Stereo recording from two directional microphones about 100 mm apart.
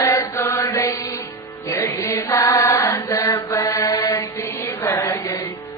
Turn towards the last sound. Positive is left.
turn(degrees=35)  # may be behind; listen again after turning